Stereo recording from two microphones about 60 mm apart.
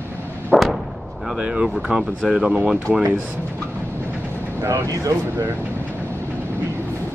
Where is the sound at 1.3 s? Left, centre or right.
Centre.